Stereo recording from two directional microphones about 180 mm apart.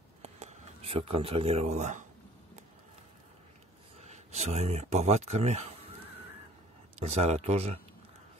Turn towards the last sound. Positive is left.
turn(degrees=-35)  # may be behind; listen again after turning